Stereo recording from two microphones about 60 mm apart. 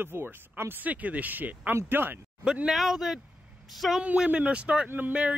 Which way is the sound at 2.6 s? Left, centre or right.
Centre.